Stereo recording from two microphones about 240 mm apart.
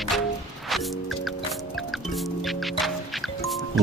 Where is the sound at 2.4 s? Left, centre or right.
Centre.